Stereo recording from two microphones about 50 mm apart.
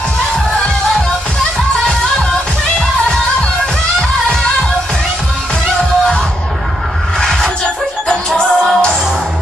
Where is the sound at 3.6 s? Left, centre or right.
Centre.